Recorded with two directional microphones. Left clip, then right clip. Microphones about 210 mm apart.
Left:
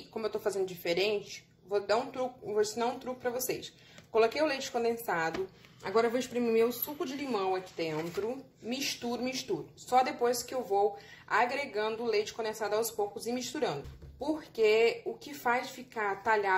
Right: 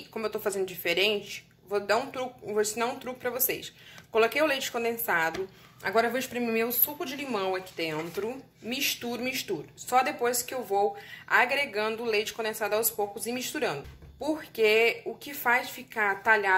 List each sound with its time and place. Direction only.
0.1 s speech: centre (ahead or behind)